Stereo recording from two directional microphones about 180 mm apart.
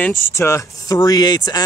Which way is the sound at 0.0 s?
15° left (ahead or behind).